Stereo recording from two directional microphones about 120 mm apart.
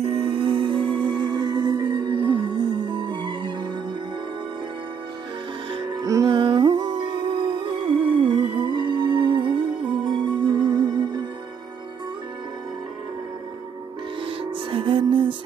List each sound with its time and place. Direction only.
0.0 s music: 55° right (ahead or behind)
5.7 s music: 35° right (ahead or behind)
6.3 s music: 40° right (ahead or behind)
14.2 s music: 50° right (ahead or behind)